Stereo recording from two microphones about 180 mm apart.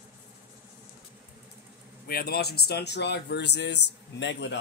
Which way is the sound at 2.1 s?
60° left (ahead or behind).